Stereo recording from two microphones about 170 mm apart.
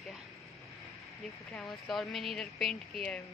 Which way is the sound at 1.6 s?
Centre (ahead or behind).